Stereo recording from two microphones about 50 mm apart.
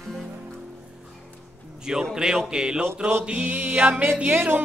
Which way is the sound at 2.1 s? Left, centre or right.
Centre.